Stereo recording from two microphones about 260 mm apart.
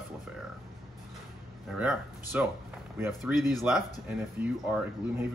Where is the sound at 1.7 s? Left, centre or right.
Centre.